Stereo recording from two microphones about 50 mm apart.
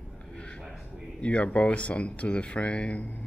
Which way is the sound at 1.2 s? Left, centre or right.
Left.